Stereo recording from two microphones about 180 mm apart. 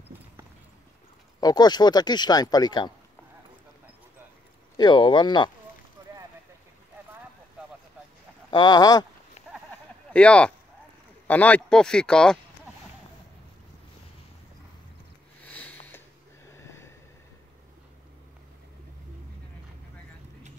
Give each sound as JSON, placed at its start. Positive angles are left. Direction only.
{"t": 1.4, "sound": "speech", "side_deg": 20}
{"t": 4.7, "sound": "speech", "side_deg": 25}
{"t": 8.5, "sound": "speech", "side_deg": 25}
{"t": 10.1, "sound": "speech", "side_deg": 5}
{"t": 15.4, "sound": "a sound", "side_deg": 10}